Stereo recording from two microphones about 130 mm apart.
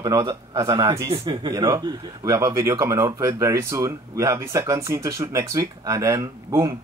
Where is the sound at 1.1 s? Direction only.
40° right (ahead or behind).